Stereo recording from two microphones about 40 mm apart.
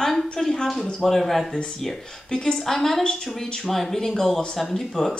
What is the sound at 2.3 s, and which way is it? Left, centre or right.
Speech, left.